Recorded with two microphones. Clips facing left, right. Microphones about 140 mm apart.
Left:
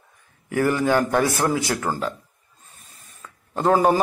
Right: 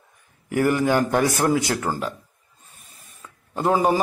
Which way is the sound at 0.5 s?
20° right (ahead or behind).